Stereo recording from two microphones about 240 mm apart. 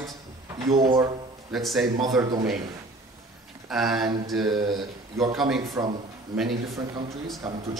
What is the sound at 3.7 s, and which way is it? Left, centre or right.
A man's voice, centre.